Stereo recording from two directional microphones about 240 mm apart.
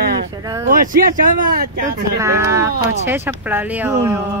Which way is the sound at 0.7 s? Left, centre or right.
Right.